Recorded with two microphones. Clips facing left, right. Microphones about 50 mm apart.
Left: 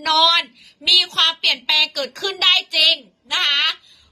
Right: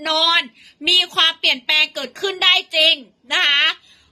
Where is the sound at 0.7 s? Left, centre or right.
Right.